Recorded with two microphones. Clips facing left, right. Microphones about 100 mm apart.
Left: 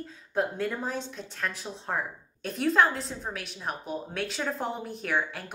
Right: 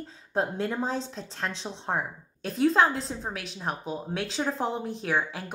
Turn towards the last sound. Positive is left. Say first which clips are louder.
# right 2 dB
turn(degrees=-25)  # may be behind; listen again after turning